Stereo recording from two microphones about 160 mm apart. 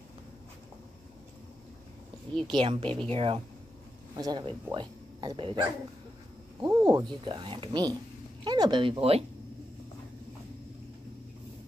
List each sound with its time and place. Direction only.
2.5 s speech: 30° right (ahead or behind)
4.1 s speech: 25° right (ahead or behind)